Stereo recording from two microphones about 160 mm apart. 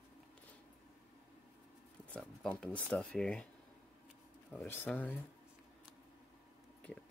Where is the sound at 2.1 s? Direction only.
5° left (ahead or behind).